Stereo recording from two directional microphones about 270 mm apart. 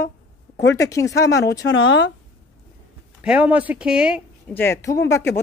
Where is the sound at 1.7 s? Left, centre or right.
Left.